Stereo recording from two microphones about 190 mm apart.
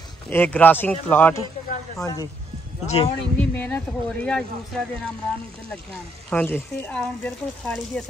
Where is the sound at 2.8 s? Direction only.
35° left (ahead or behind).